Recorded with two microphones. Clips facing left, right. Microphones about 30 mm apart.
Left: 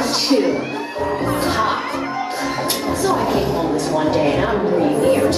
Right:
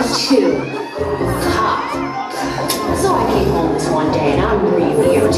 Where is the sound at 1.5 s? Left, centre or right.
Centre.